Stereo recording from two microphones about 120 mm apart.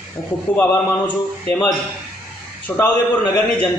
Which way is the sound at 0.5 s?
15° left (ahead or behind).